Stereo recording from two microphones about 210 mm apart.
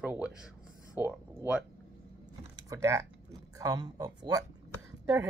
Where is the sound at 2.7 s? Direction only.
15° right (ahead or behind).